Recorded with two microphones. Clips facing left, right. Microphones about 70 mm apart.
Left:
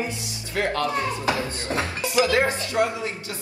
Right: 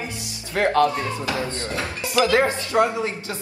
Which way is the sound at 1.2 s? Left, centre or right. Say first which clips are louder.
Left 1 dB; left.